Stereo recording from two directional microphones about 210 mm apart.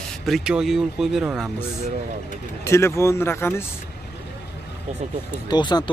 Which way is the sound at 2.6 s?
10° left (ahead or behind).